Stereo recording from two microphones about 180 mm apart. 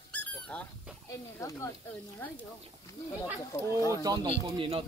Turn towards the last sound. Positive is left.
turn(degrees=-30)  # may be behind; listen again after turning